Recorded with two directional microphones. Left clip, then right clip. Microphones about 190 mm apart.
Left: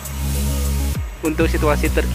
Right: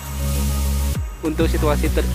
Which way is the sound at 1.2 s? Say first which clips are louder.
Left 2 dB; 5° right (ahead or behind).